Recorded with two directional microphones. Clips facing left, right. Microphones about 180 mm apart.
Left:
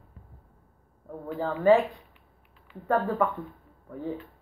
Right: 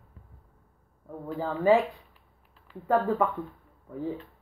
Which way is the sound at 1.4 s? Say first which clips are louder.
Left 2 dB; 10° right (ahead or behind).